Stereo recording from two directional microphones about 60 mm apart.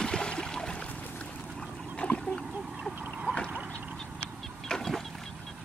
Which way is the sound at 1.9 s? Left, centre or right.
Centre.